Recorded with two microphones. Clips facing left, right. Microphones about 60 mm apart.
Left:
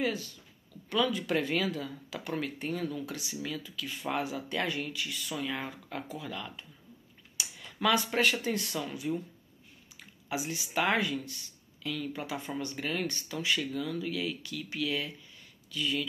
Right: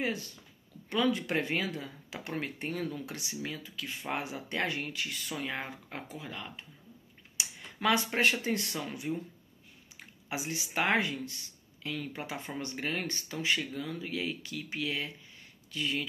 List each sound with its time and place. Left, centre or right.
0.0 s speech: right